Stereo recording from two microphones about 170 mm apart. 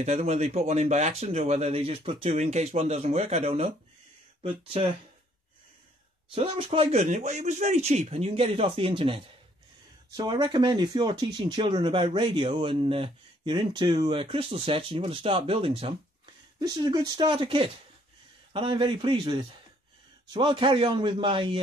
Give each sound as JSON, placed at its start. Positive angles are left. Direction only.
{"t": 0.0, "sound": "speech", "side_deg": -40}
{"t": 6.3, "sound": "a man's voice", "side_deg": -30}